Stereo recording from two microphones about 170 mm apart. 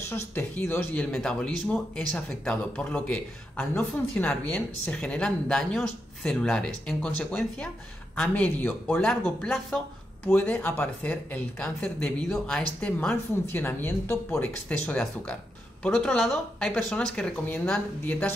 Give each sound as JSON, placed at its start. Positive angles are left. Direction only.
{"t": 0.1, "sound": "a woman's voice", "side_deg": 10}